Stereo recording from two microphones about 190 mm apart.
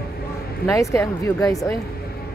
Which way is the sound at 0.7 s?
15° left (ahead or behind).